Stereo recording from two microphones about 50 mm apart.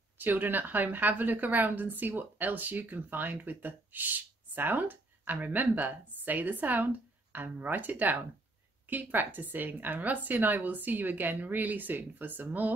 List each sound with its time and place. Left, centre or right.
0.2 s a woman's voice: right